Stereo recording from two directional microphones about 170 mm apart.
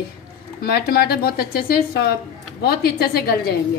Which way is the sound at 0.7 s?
70° left (ahead or behind).